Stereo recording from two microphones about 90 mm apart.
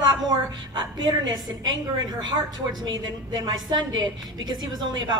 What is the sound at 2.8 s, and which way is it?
A woman's voice, 50° right (ahead or behind).